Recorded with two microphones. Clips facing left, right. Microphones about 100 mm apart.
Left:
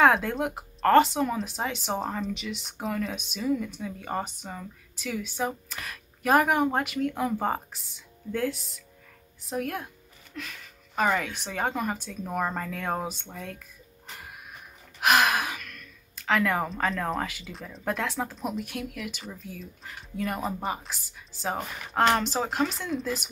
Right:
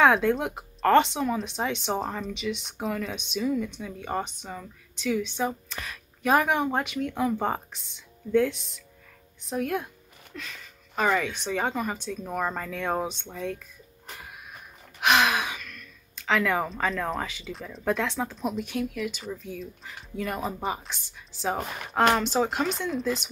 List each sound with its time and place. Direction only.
0.0 s speech: centre (ahead or behind)
11.0 s speech: 5° left (ahead or behind)
15.0 s speech: 5° left (ahead or behind)